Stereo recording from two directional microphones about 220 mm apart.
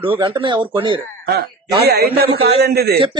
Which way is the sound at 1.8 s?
45° right (ahead or behind).